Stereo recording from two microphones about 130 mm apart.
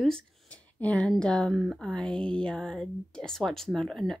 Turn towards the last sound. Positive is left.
turn(degrees=0)  # may be behind; listen again after turning